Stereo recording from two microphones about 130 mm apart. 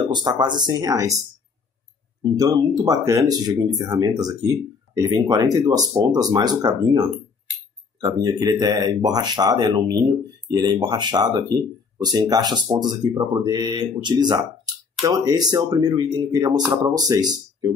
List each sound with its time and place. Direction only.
0.1 s speech: 30° right (ahead or behind)
2.2 s speech: 30° right (ahead or behind)